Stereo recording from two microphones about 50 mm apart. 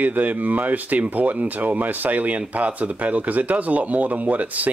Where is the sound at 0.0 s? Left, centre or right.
Right.